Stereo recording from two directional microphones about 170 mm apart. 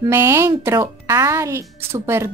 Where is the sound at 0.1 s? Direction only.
15° right (ahead or behind).